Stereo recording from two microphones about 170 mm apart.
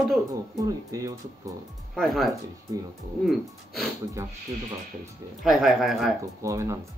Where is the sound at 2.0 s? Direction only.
Centre (ahead or behind).